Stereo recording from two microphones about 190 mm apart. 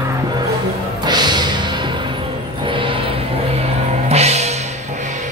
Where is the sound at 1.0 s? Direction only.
20° right (ahead or behind).